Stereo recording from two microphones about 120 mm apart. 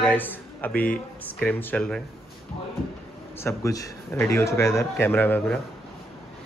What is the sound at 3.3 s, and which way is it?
A man's voice, 25° left (ahead or behind).